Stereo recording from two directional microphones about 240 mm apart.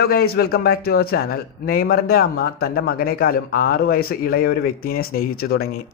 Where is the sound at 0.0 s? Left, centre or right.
Left.